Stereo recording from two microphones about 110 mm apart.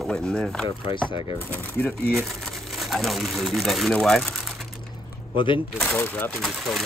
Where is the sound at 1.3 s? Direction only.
15° left (ahead or behind).